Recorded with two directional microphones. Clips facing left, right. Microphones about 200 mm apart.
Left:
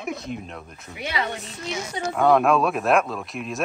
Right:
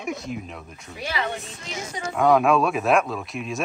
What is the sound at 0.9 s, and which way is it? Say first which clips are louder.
Speech: left 1 dB; 20° left (ahead or behind).